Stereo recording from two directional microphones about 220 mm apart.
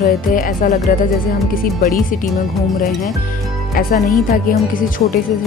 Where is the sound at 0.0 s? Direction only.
40° left (ahead or behind).